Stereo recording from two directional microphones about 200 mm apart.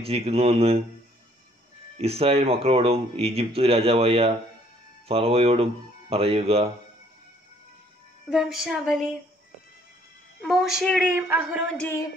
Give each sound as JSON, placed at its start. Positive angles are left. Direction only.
{"t": 0.0, "sound": "speech", "side_deg": -30}
{"t": 2.0, "sound": "speech", "side_deg": -30}
{"t": 8.3, "sound": "a woman's voice", "side_deg": 0}
{"t": 10.4, "sound": "a woman's voice", "side_deg": 0}
{"t": 11.1, "sound": "a man's voice", "side_deg": -10}
{"t": 11.7, "sound": "speech", "side_deg": 5}